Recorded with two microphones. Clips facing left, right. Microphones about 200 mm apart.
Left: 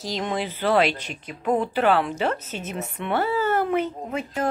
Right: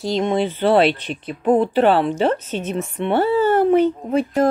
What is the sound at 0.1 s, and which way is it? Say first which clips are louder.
Speech: right 8 dB; 25° right (ahead or behind).